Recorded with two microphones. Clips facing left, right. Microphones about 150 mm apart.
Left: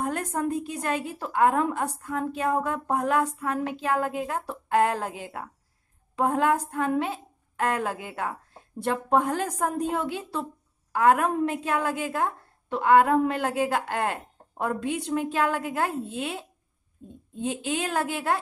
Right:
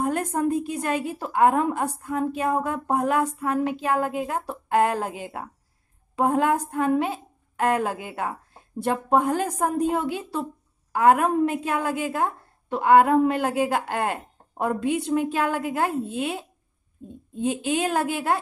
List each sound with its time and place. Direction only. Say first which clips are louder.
0.2 s a woman's voice: right 4 dB; 20° right (ahead or behind)
0.5 s a woman's voice: right 3 dB; 10° right (ahead or behind)